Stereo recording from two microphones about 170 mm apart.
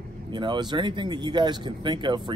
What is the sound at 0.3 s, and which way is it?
Speech, 25° right (ahead or behind).